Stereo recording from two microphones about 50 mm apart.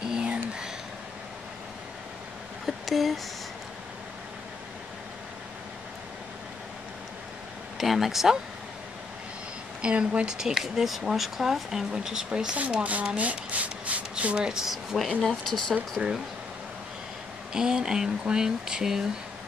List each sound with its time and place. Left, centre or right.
0.1 s a sound: centre
2.6 s a sound: centre
7.7 s speech: centre
9.8 s speech: right
12.8 s speech: right
14.5 s speech: centre
15.0 s speech: centre
16.0 s speech: centre
17.6 s speech: centre